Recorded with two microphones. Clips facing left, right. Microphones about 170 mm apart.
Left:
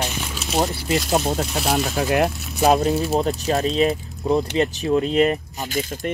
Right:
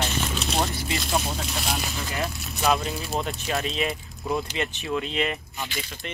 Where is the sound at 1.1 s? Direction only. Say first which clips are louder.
Left 6 dB; 45° left (ahead or behind).